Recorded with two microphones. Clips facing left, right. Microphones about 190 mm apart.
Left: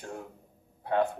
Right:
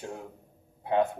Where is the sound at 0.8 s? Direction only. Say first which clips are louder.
Right 1 dB; 20° right (ahead or behind).